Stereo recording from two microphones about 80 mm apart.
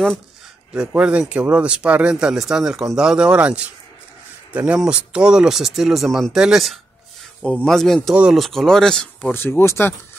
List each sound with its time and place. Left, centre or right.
0.7 s speech: centre
7.4 s speech: centre
8.1 s speech: centre
8.4 s speech: centre
9.2 s speech: left